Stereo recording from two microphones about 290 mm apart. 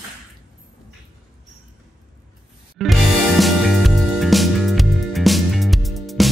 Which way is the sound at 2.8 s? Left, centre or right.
Centre.